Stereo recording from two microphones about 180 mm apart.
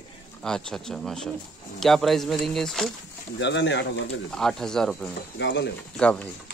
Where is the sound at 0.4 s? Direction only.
5° left (ahead or behind).